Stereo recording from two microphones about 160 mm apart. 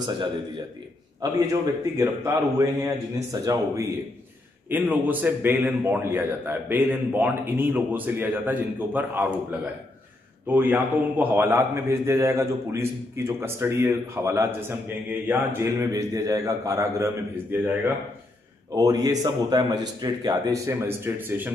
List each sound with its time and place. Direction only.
1.4 s a man's voice: 20° right (ahead or behind)
10.5 s a man's voice: 10° right (ahead or behind)